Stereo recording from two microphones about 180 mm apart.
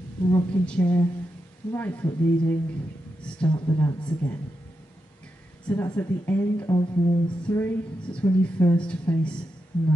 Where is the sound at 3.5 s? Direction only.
25° left (ahead or behind).